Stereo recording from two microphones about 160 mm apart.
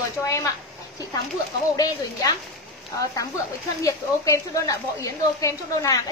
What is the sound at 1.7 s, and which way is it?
Speech, 20° left (ahead or behind).